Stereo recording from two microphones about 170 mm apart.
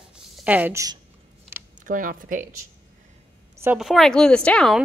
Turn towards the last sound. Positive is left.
turn(degrees=5)  # may be behind; listen again after turning